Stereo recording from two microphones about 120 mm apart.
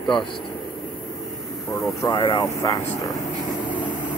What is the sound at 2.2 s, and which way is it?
Speech, 40° left (ahead or behind).